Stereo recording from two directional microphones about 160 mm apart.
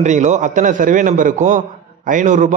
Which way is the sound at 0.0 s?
50° right (ahead or behind).